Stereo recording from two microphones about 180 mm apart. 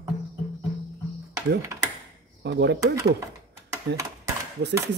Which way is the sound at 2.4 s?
75° right (ahead or behind).